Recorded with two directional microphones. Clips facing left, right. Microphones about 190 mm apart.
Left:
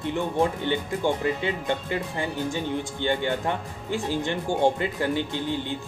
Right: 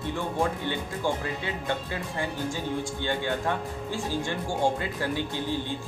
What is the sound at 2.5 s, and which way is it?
Speech, 20° left (ahead or behind).